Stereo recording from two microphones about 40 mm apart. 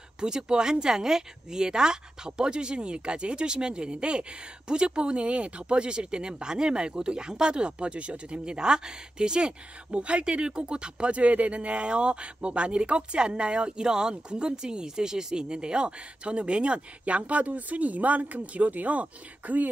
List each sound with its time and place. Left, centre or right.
0.2 s speech: centre
17.0 s speech: right